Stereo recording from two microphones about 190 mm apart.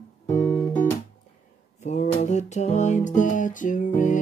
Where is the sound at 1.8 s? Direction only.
40° left (ahead or behind).